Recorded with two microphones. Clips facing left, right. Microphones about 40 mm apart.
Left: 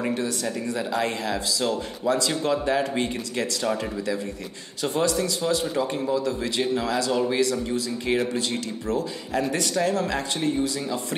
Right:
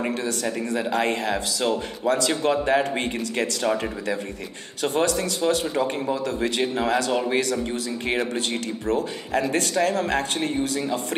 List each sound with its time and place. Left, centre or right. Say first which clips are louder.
0.2 s speech: right 1 dB; right
2.0 s speech: right 2 dB; right
3.7 s speech: right 3 dB; centre
4.8 s speech: right 1 dB; right
5.8 s speech: even; right
6.2 s speech: right 2 dB; right
6.6 s speech: even; right
8.5 s speech: right 2 dB; right